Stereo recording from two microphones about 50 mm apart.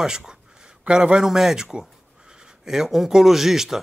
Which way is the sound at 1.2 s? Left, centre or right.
Centre.